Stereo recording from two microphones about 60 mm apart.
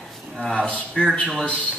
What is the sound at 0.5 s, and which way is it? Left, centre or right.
Speech, centre.